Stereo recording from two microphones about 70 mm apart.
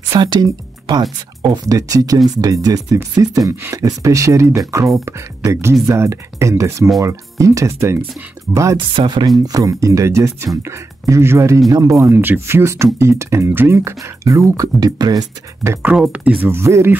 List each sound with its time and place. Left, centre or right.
0.2 s speech: right
1.7 s speech: right
8.7 s speech: right
9.4 s speech: right
11.7 s speech: right
12.1 s speech: right
14.8 s speech: right
16.1 s speech: centre
16.4 s speech: right